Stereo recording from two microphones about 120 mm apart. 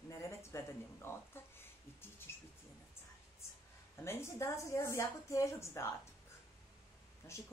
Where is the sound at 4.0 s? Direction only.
20° left (ahead or behind).